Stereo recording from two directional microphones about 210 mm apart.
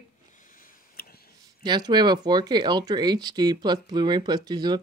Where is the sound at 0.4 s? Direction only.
40° left (ahead or behind).